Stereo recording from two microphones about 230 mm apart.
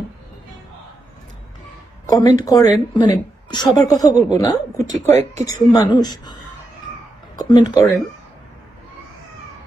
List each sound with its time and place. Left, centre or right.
2.0 s a woman's voice: centre
4.1 s a woman's voice: right
4.4 s a woman's voice: centre